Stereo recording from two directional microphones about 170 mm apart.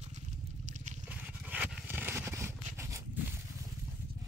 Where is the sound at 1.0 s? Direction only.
10° right (ahead or behind).